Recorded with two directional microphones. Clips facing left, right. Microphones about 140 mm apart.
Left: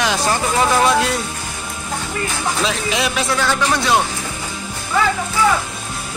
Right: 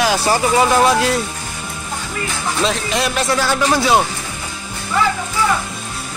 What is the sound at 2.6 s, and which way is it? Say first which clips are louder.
Speech: right 3 dB; centre (ahead or behind).